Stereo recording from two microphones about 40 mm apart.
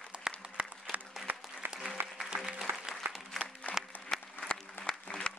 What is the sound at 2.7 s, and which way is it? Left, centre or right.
Applause, right.